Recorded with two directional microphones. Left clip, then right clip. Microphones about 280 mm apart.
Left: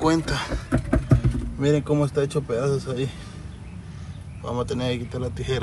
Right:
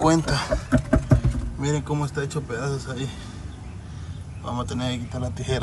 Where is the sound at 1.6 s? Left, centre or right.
Centre.